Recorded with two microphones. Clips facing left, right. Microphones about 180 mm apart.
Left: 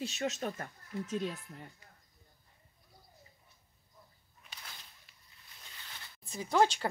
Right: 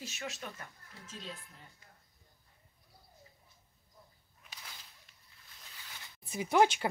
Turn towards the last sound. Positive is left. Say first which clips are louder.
# right 1 dB
turn(degrees=-10)  # may be behind; listen again after turning